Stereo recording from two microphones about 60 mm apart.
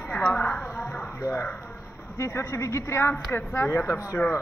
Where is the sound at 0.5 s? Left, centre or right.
Centre.